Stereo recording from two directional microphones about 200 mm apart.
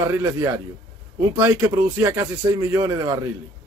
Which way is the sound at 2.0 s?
15° right (ahead or behind).